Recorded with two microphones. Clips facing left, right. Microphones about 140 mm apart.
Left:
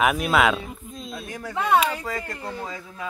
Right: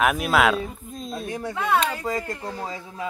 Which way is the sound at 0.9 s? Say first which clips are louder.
Right 4 dB; 45° right (ahead or behind).